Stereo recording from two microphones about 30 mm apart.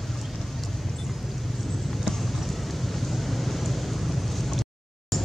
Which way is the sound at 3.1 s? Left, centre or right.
Centre.